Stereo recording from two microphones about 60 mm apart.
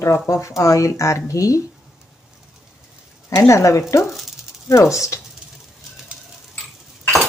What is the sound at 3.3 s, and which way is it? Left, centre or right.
Speech, left.